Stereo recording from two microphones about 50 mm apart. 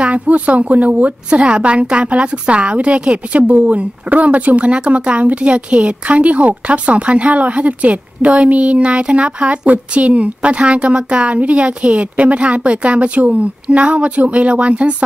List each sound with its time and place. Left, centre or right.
0.0 s a woman's voice: right